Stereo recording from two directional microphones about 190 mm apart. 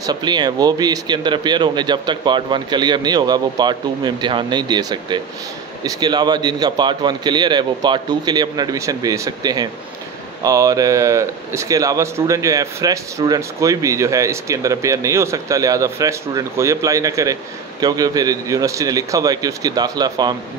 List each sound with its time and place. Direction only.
0.0 s speech: 20° right (ahead or behind)